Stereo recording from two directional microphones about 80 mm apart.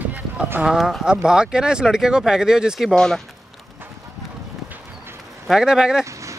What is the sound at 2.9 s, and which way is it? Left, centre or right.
Speech, centre.